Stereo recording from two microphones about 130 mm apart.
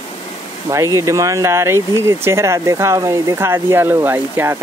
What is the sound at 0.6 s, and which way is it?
Speech, 25° right (ahead or behind).